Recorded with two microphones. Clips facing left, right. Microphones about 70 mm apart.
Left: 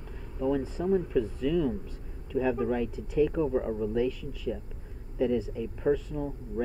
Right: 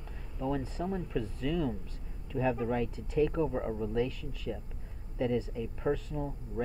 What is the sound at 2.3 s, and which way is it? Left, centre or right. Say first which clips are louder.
Speech: left 3 dB; centre.